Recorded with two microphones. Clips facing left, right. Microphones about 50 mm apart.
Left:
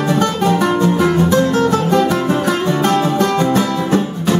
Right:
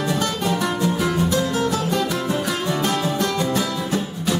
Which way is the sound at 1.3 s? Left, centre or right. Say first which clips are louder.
Left 7 dB; left.